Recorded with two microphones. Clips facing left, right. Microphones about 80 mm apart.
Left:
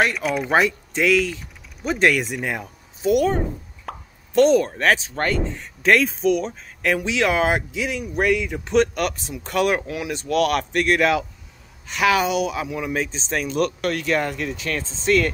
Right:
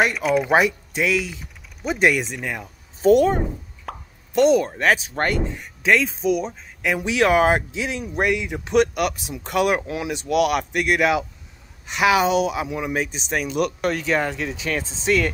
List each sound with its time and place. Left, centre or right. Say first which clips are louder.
0.0 s speech: right 2 dB; centre
3.0 s speech: right 4 dB; right
3.8 s plop: left 1 dB; centre
4.7 s speech: even; centre
5.1 s speech: even; right
5.8 s speech: left 2 dB; centre
7.0 s speech: right 5 dB; right; by 15.3 s centre